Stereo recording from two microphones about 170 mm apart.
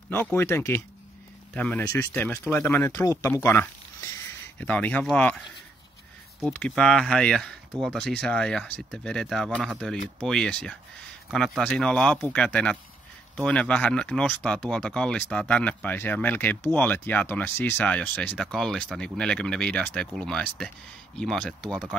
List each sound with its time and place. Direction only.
0.1 s speech: 10° left (ahead or behind)
3.4 s a sound: 15° left (ahead or behind)
4.6 s speech: 10° left (ahead or behind)
6.4 s speech: 5° left (ahead or behind)